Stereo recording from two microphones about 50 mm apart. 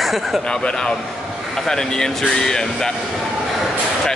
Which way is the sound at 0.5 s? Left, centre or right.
Centre.